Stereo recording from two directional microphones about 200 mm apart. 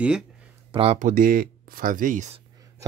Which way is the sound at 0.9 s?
40° right (ahead or behind).